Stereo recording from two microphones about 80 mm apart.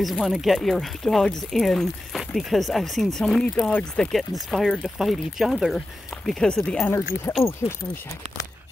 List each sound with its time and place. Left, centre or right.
0.0 s speech: centre
6.2 s speech: centre
7.4 s speech: left